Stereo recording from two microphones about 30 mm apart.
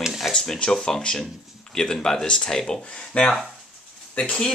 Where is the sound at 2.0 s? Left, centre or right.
Centre.